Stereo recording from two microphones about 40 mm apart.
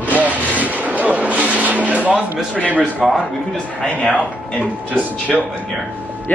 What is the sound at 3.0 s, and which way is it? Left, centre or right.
Speech, centre.